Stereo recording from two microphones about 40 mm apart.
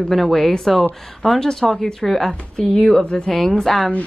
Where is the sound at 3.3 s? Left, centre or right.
Centre.